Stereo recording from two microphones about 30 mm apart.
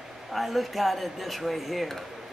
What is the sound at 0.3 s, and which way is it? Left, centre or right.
Speech, centre.